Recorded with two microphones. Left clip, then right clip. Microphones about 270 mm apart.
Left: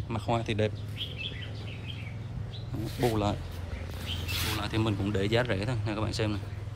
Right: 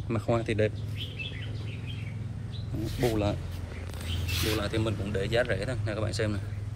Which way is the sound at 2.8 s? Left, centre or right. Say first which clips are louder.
Even; centre.